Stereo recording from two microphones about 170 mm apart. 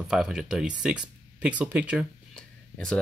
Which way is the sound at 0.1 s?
5° right (ahead or behind).